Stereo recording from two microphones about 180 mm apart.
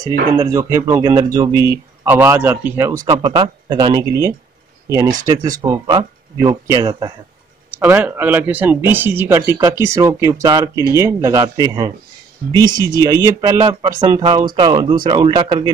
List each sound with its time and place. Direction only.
0.4 s speech: 15° right (ahead or behind)